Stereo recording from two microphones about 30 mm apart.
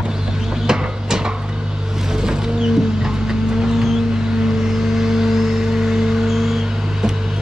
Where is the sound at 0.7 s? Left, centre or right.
Right.